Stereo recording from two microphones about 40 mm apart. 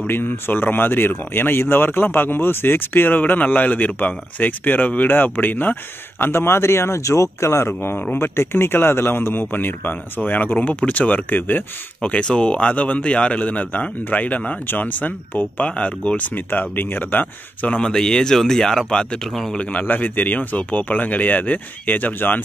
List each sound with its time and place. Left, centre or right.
0.1 s speech: left
10.7 s speech: left
11.2 s speech: left
12.0 s speech: left
12.8 s speech: left
15.5 s speech: left
16.3 s speech: left
17.6 s speech: left
19.5 s speech: left
19.8 s speech: left